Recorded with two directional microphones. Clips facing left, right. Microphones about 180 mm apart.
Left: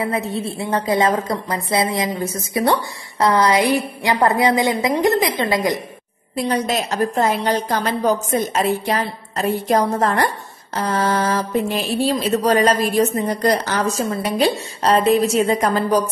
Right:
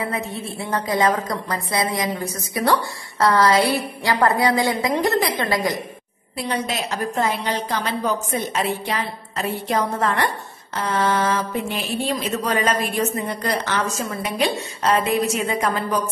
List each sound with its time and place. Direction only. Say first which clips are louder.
0.1 s a woman's voice: left 5 dB; 30° left (ahead or behind)
6.3 s a woman's voice: left 5 dB; 45° left (ahead or behind)